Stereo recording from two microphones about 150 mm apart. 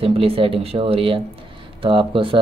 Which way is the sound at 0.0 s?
40° right (ahead or behind).